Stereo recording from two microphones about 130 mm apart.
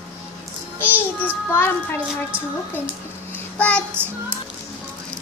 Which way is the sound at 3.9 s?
15° right (ahead or behind).